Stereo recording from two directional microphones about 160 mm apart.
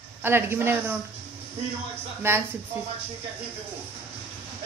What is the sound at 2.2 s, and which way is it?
Speech, 15° right (ahead or behind).